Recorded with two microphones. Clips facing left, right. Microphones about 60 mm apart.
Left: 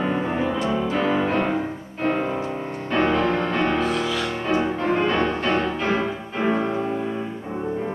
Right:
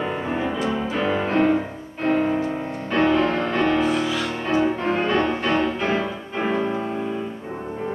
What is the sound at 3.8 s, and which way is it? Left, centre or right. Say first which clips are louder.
Music: right 1 dB; centre.